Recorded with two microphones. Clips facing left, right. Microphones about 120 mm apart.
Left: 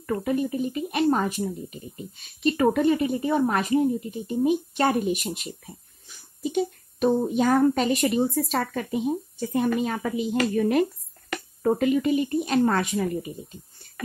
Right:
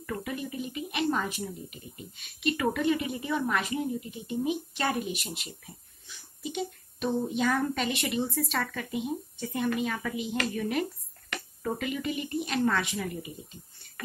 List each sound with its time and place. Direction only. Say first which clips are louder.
0.0 s a child's voice: left 9 dB; 40° left (ahead or behind)